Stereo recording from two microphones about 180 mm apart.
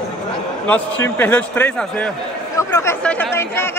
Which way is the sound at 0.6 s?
5° left (ahead or behind).